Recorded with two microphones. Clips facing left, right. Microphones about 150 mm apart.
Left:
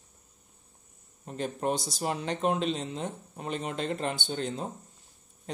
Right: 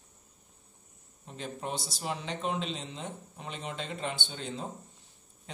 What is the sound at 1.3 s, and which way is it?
Speech, 50° left (ahead or behind).